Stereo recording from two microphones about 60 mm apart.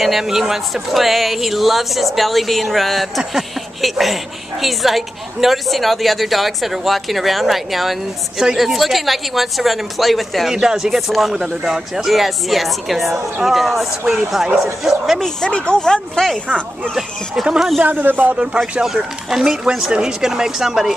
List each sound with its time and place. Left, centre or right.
0.0 s speech: centre
15.1 s speech: centre
17.6 s speech: centre
17.8 s a man's voice: right
18.3 s speech: centre